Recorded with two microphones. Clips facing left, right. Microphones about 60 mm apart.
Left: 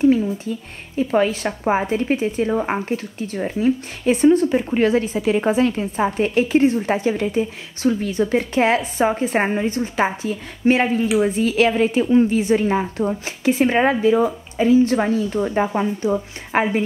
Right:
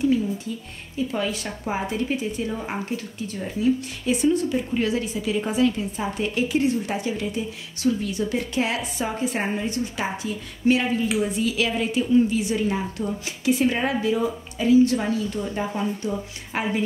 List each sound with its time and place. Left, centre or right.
0.9 s a woman's voice: left